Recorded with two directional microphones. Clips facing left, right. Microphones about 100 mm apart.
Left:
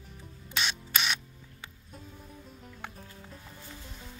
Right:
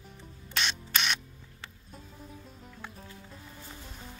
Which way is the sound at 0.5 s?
5° left (ahead or behind).